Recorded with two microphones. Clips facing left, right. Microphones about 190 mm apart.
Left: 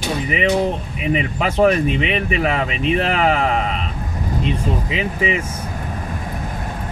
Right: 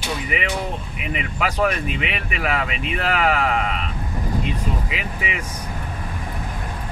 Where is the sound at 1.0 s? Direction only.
25° left (ahead or behind).